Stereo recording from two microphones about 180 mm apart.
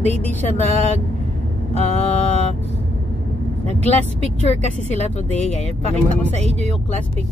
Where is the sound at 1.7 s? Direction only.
35° left (ahead or behind).